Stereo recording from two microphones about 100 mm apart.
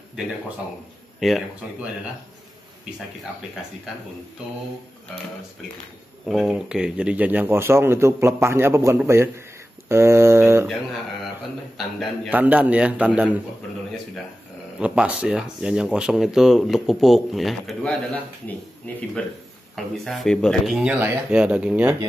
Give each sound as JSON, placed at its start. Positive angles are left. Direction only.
{"t": 1.2, "sound": "speech", "side_deg": 0}
{"t": 6.2, "sound": "speech", "side_deg": -5}
{"t": 12.3, "sound": "a man's voice", "side_deg": -15}
{"t": 14.8, "sound": "speech", "side_deg": -10}
{"t": 18.9, "sound": "speech", "side_deg": 15}
{"t": 19.7, "sound": "speech", "side_deg": 0}
{"t": 20.7, "sound": "a man's voice", "side_deg": -10}